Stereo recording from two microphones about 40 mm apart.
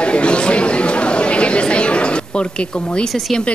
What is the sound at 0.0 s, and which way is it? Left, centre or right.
Chatter, left.